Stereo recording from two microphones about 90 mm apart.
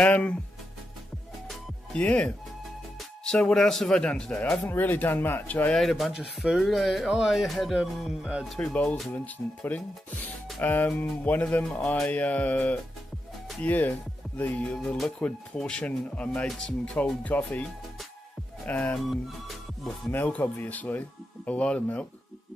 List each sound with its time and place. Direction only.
0.0 s speech: 15° left (ahead or behind)
2.0 s speech: 15° left (ahead or behind)
4.5 s speech: 25° left (ahead or behind)
5.7 s speech: centre (ahead or behind)
9.1 s speech: 20° left (ahead or behind)
18.7 s speech: 15° left (ahead or behind)
19.0 s music: centre (ahead or behind)
20.2 s speech: 15° left (ahead or behind)